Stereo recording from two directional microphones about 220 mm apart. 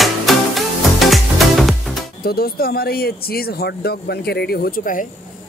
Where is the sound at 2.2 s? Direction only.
45° left (ahead or behind).